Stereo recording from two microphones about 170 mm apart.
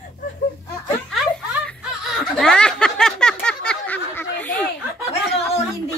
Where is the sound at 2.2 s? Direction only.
5° left (ahead or behind).